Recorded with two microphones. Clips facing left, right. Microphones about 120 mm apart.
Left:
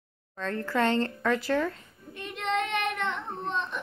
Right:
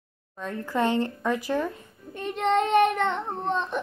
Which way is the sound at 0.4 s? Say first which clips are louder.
Right 1 dB; 15° right (ahead or behind).